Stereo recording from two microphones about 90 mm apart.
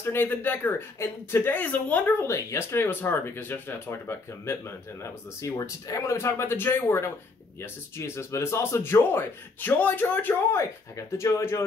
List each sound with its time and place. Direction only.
0.0 s a man's voice: 25° left (ahead or behind)
2.2 s a man's voice: 35° left (ahead or behind)